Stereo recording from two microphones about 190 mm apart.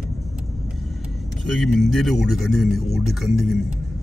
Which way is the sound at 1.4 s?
Centre (ahead or behind).